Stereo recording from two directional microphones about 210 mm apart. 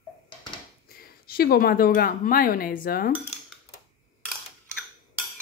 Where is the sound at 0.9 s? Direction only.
45° left (ahead or behind).